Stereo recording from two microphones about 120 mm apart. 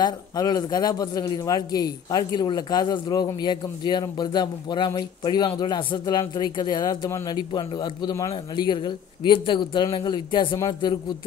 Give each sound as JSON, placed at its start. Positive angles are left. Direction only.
{"t": 0.0, "sound": "a man's voice", "side_deg": 30}